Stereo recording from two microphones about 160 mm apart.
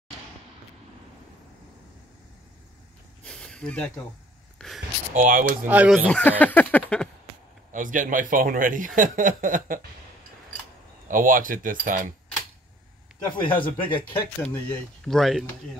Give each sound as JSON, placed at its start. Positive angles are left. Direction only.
{"t": 3.3, "sound": "a sound", "side_deg": 5}
{"t": 4.6, "sound": "speech", "side_deg": 0}
{"t": 5.1, "sound": "speech", "side_deg": -55}
{"t": 5.7, "sound": "speech", "side_deg": -5}
{"t": 7.7, "sound": "speech", "side_deg": -55}
{"t": 11.1, "sound": "speech", "side_deg": -55}
{"t": 13.4, "sound": "speech", "side_deg": 30}
{"t": 14.4, "sound": "speech", "side_deg": 5}